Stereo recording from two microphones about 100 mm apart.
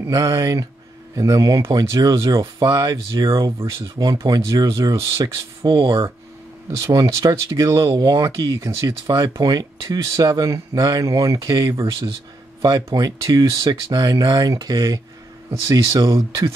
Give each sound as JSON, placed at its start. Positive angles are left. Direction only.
{"t": 0.0, "sound": "speech", "side_deg": -35}
{"t": 5.2, "sound": "speech", "side_deg": -45}
{"t": 6.8, "sound": "speech", "side_deg": -35}